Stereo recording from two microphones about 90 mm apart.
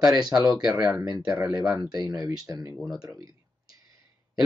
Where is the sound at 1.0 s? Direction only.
50° right (ahead or behind).